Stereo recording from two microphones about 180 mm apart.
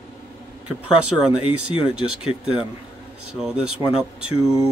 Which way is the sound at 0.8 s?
5° right (ahead or behind).